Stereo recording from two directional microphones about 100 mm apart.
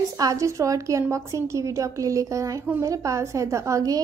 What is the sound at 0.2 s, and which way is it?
A woman's voice, 35° right (ahead or behind).